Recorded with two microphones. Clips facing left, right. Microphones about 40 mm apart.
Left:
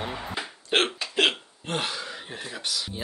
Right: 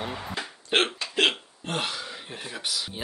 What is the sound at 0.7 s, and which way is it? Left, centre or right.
Hiccup, centre.